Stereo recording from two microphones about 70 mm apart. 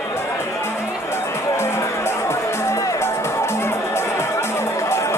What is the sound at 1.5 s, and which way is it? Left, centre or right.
Music, left.